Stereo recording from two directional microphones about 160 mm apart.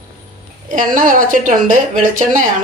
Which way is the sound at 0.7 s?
55° right (ahead or behind).